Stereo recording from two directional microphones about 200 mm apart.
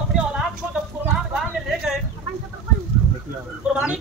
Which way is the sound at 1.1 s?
Centre (ahead or behind).